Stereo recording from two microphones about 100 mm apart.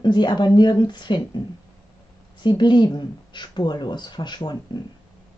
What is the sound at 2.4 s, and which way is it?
Speech, 50° left (ahead or behind).